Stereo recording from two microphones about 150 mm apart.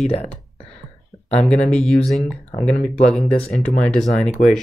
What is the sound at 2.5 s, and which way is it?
Speech, 45° left (ahead or behind).